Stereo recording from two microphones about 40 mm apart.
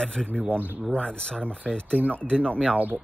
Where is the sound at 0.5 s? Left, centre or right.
Right.